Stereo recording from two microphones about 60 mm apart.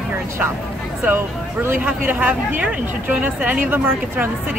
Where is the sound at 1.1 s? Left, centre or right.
Right.